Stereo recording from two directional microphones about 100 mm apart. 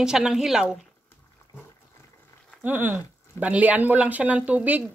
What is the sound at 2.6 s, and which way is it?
Speech, 20° right (ahead or behind).